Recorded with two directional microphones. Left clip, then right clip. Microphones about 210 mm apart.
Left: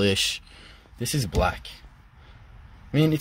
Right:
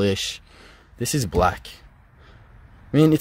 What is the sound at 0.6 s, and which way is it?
Speech, 25° right (ahead or behind).